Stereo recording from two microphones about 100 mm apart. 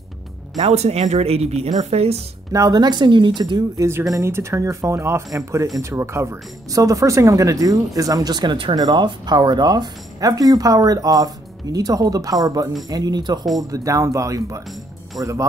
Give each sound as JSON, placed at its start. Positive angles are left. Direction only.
{"t": 0.6, "sound": "speech", "side_deg": -90}
{"t": 2.5, "sound": "a woman's voice", "side_deg": -40}
{"t": 3.7, "sound": "a woman's voice", "side_deg": -30}